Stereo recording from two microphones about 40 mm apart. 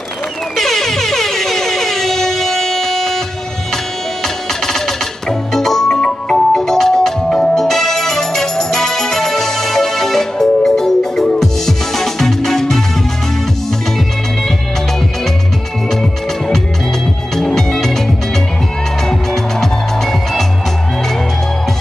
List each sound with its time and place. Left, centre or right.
0.6 s air horn: centre
3.7 s music: centre
15.9 s music: centre